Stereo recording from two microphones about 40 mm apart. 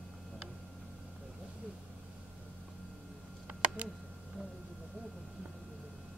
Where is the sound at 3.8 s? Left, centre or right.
Right.